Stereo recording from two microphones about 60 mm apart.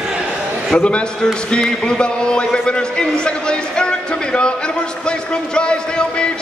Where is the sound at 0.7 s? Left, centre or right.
Centre.